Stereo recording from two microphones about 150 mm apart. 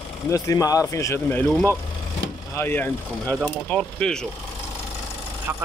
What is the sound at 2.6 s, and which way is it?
Speech, 15° left (ahead or behind).